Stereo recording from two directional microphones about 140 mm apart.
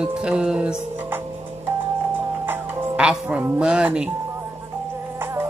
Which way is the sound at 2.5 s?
10° right (ahead or behind).